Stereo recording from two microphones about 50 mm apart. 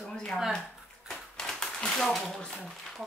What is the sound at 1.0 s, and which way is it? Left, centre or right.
Typewriter, centre.